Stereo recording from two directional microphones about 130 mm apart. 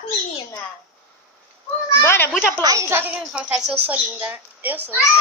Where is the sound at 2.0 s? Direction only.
20° left (ahead or behind).